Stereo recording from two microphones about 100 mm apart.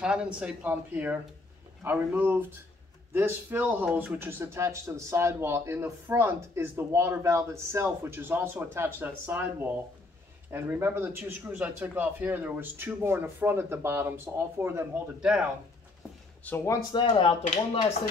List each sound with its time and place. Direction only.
0.0 s speech: 10° right (ahead or behind); by 14.9 s 25° right (ahead or behind)
15.1 s speech: 10° right (ahead or behind)
16.5 s speech: 15° left (ahead or behind)
16.9 s speech: 50° left (ahead or behind)